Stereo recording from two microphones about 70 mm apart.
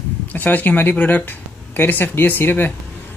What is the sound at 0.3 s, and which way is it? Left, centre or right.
Speech, left.